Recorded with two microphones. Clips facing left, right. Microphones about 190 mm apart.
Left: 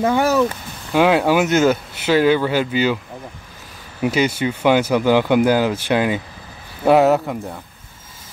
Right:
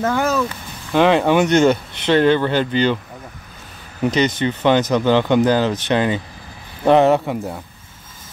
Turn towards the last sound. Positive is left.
turn(degrees=0)  # may be behind; listen again after turning